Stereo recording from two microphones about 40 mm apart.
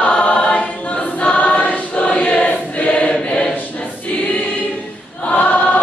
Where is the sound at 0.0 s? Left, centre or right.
Left.